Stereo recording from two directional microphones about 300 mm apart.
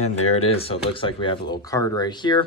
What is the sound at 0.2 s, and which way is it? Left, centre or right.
Speech, left.